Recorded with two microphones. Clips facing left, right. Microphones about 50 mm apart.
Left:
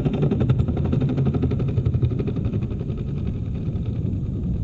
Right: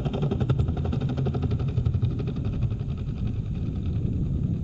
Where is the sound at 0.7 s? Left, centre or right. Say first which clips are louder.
Left 6 dB; centre.